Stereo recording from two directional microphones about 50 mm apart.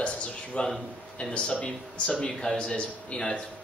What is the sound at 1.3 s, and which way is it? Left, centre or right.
A man's voice, left.